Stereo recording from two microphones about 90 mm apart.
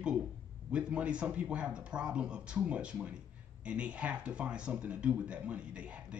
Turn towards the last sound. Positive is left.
turn(degrees=-15)  # may be behind; listen again after turning